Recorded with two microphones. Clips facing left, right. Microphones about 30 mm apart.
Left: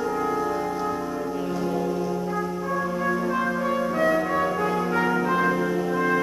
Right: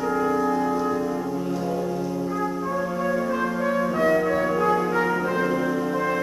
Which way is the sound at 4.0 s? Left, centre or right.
Centre.